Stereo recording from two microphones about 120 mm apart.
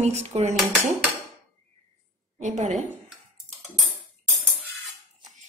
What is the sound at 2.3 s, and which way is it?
Speech, 90° right.